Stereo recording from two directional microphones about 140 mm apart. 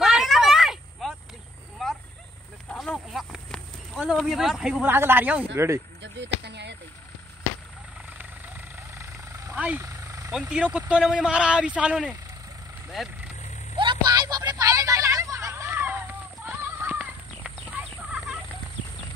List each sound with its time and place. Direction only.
0.0 s a sound: centre (ahead or behind)
8.9 s helicopter: 20° right (ahead or behind)
9.8 s vehicle: 20° right (ahead or behind)
10.5 s speech: 10° right (ahead or behind)
12.9 s vehicle: centre (ahead or behind)
13.7 s a sound: 30° right (ahead or behind); by 16.0 s 15° right (ahead or behind)
16.4 s fowl: 15° right (ahead or behind)